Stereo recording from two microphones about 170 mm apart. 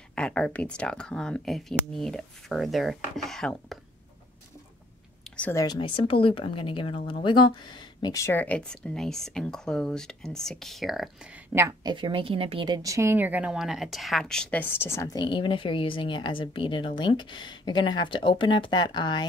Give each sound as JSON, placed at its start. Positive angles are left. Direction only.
{"t": 0.1, "sound": "speech", "side_deg": 5}
{"t": 5.3, "sound": "a sound", "side_deg": 10}
{"t": 5.6, "sound": "speech", "side_deg": 25}
{"t": 11.8, "sound": "speech", "side_deg": -25}